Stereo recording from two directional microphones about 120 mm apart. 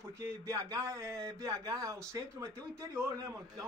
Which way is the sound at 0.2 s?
25° right (ahead or behind).